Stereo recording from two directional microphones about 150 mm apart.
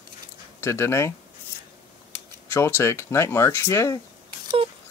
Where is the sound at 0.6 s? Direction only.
20° left (ahead or behind).